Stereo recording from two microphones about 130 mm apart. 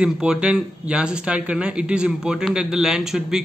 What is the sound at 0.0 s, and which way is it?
A man's voice, 5° right (ahead or behind).